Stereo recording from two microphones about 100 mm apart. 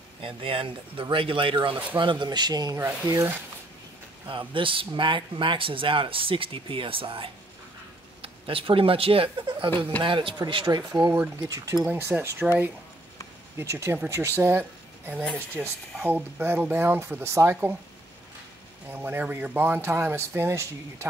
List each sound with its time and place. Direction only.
0.2 s speech: 60° right (ahead or behind); by 3.3 s 35° right (ahead or behind)
4.3 s speech: 55° right (ahead or behind)
11.4 s speech: 35° right (ahead or behind)
18.9 s speech: 20° right (ahead or behind)